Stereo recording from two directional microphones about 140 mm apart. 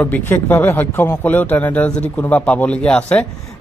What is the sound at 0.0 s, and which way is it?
Speech, 15° left (ahead or behind).